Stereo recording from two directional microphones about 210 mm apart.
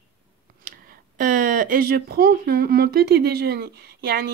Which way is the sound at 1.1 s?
40° right (ahead or behind).